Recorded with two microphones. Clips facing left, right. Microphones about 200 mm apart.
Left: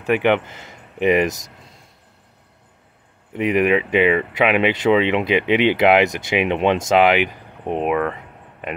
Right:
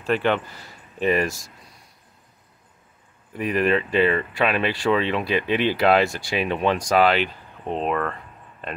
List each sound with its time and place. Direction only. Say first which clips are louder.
0.0 s speech: left 4 dB; 15° left (ahead or behind)
3.3 s speech: left 4 dB; 20° left (ahead or behind)